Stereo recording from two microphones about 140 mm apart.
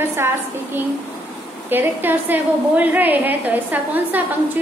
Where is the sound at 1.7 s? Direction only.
15° right (ahead or behind).